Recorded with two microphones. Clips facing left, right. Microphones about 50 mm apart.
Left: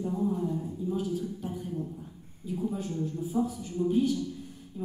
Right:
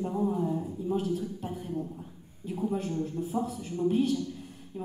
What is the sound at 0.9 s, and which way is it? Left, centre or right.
A woman's voice, right.